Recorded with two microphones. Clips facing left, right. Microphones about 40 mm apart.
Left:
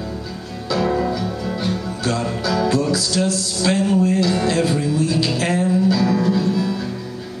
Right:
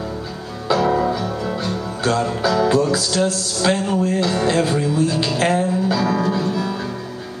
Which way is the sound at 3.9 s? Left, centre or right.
Centre.